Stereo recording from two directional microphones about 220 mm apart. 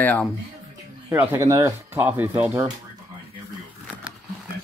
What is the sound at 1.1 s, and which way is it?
Speech, 10° right (ahead or behind).